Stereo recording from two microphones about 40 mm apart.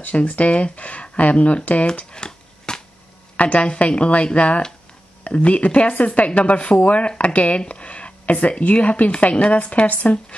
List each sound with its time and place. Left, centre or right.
0.1 s speech: left
2.1 s shuffling cards: centre
3.3 s speech: left